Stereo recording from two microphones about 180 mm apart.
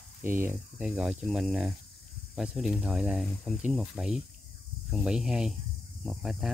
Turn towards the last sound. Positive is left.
turn(degrees=0)  # may be behind; listen again after turning